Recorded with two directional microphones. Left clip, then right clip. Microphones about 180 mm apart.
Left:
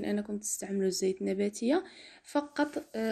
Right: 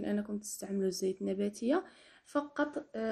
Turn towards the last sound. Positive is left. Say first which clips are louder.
# left 3 dB
turn(degrees=25)  # may be behind; listen again after turning